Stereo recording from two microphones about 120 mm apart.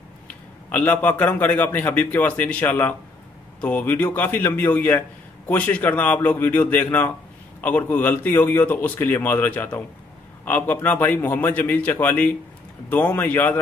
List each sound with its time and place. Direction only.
0.3 s a man's voice: 15° left (ahead or behind)